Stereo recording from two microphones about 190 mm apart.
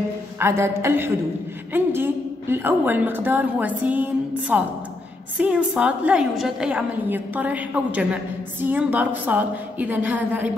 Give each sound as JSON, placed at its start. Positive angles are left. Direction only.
{"t": 0.4, "sound": "a woman's voice", "side_deg": -15}